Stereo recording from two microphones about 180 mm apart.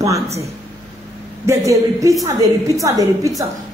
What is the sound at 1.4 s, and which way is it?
A woman's voice, 15° right (ahead or behind).